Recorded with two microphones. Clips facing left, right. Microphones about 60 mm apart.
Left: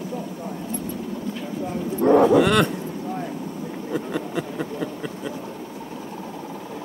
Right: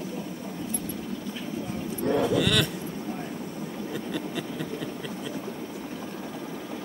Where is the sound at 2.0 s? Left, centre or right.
Left.